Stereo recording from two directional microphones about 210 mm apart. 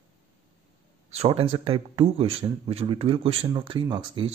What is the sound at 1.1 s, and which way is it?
Speech, 30° right (ahead or behind).